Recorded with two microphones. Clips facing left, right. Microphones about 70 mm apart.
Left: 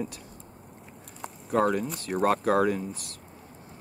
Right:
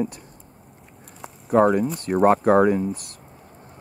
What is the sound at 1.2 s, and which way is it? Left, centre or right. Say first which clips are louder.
Speech: right 7 dB; centre.